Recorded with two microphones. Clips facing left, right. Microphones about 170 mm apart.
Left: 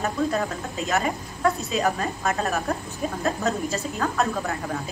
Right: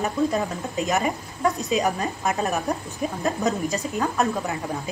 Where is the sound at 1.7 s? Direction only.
10° right (ahead or behind).